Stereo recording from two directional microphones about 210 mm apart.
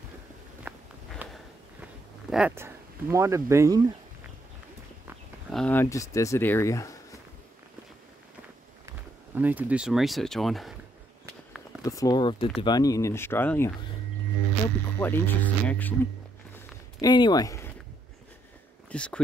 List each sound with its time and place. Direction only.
0.7 s walk: 10° right (ahead or behind)
1.2 s a sound: 5° right (ahead or behind)
5.5 s speech: 5° left (ahead or behind)
8.8 s speech: 10° right (ahead or behind)
11.8 s speech: 15° left (ahead or behind)
15.0 s speech: 10° left (ahead or behind)
17.0 s speech: 20° left (ahead or behind)
18.9 s a sound: 5° left (ahead or behind)